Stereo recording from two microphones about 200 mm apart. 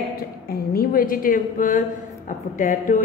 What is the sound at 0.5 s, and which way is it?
A woman's voice, 50° left (ahead or behind).